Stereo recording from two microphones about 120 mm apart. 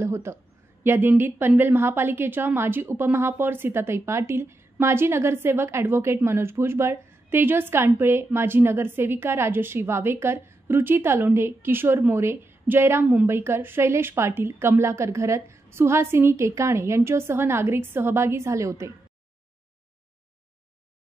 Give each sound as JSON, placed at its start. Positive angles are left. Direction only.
{"t": 0.0, "sound": "a woman's voice", "side_deg": -25}